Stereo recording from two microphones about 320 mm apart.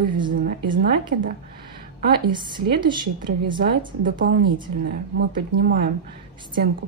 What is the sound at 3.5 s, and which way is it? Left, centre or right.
Speech, right.